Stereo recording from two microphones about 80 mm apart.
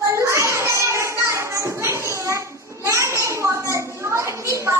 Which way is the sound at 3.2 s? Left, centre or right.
Right.